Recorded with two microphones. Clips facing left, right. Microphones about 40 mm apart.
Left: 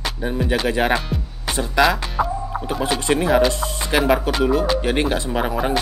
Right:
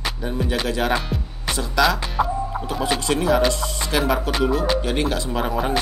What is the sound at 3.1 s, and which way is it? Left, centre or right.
Speech, centre.